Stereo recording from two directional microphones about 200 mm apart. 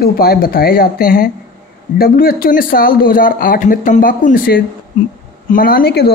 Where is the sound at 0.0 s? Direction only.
50° left (ahead or behind).